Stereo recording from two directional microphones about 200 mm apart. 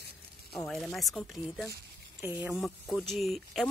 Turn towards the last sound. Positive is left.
turn(degrees=0)  # may be behind; listen again after turning